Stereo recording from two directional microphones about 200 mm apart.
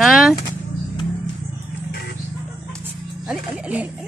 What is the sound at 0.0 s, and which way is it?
Vehicle, centre (ahead or behind).